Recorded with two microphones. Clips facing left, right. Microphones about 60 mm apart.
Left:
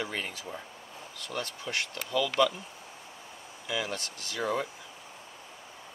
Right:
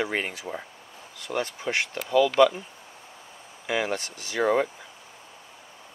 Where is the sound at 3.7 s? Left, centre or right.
Right.